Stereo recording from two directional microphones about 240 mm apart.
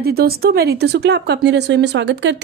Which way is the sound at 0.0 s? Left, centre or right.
Right.